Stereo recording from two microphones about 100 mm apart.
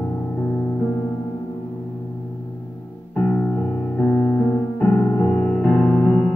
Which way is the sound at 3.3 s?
15° left (ahead or behind).